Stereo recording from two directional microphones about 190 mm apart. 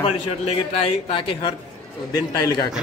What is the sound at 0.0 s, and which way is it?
A man's voice, 30° left (ahead or behind).